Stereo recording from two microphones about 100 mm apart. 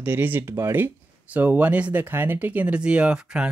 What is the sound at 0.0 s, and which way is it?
Speech, 20° right (ahead or behind).